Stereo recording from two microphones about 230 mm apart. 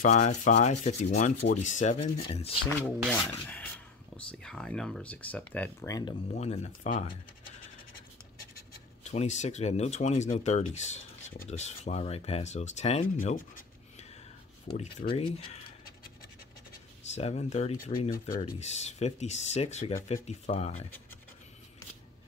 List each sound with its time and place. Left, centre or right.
0.0 s sanding: left
2.1 s speech: left
3.1 s speech: centre
6.3 s speech: left
9.0 s speech: left
17.1 s speech: left